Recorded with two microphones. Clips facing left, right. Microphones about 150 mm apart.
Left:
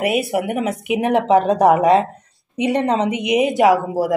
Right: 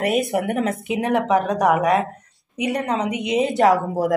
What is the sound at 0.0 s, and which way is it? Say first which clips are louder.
A woman's voice: left 1 dB; 10° left (ahead or behind).